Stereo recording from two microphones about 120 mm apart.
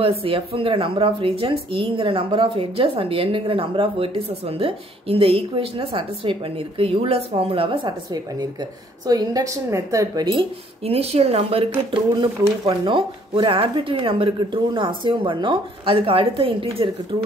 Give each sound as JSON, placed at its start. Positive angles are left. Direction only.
{"t": 0.0, "sound": "a woman's voice", "side_deg": -50}
{"t": 10.9, "sound": "speech", "side_deg": -60}